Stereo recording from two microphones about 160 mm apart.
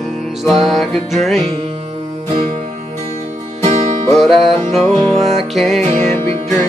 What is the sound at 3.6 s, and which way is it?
Music, 45° right (ahead or behind).